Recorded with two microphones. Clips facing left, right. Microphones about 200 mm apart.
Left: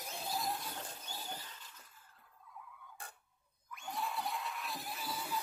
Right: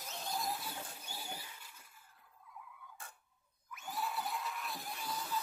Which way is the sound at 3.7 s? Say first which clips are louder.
Even; 5° right (ahead or behind).